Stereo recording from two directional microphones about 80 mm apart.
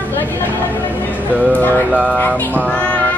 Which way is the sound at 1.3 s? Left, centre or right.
Right.